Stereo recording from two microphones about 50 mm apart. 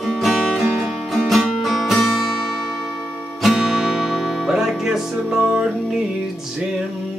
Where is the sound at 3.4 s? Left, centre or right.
Centre.